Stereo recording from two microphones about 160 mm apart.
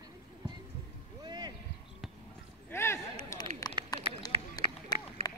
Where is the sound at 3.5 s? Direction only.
40° right (ahead or behind).